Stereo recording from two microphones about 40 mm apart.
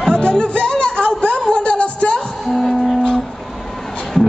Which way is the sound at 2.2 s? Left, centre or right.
Centre.